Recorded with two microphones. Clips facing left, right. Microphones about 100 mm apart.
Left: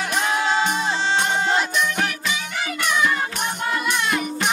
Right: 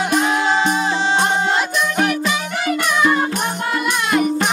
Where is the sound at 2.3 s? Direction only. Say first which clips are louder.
Right 7 dB; 55° right (ahead or behind).